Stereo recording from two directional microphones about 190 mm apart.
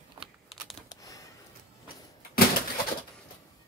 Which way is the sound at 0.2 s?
Centre (ahead or behind).